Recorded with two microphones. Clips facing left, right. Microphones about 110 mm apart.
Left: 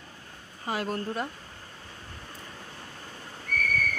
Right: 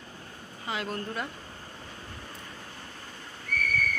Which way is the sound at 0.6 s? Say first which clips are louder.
Left 3 dB; 40° left (ahead or behind).